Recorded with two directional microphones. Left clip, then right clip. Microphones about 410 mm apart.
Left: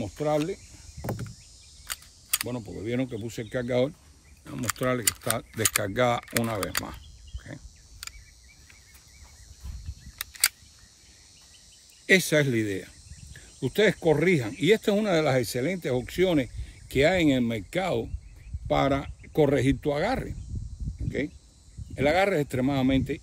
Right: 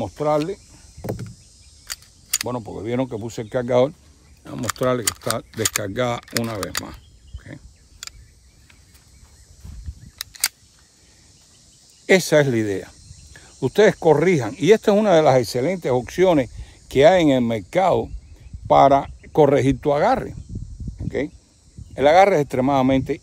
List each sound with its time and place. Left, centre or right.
0.0 s speech: centre
1.0 s vehicle: centre
1.9 s mechanisms: centre
2.4 s speech: centre
7.4 s cricket: centre
10.1 s single-lens reflex camera: centre
12.1 s speech: centre
14.0 s speech: centre
21.9 s speech: centre